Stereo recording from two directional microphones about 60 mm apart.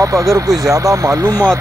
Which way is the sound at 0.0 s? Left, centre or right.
Right.